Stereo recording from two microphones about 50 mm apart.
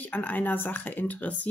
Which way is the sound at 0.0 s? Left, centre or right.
Left.